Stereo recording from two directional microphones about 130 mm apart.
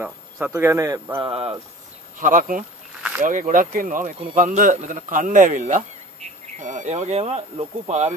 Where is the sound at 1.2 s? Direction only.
45° right (ahead or behind).